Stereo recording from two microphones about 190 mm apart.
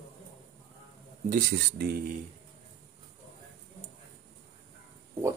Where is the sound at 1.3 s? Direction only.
50° right (ahead or behind).